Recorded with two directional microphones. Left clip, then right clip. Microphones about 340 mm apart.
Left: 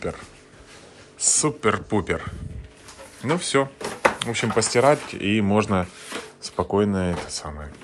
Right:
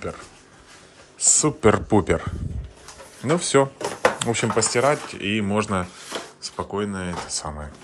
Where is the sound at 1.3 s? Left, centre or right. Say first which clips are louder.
Right 4 dB; centre.